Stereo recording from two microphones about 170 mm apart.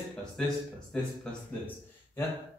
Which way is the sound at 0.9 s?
10° left (ahead or behind).